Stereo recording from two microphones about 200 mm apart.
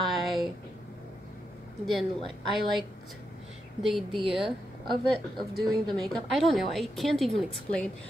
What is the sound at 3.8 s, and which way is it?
Speech, centre (ahead or behind).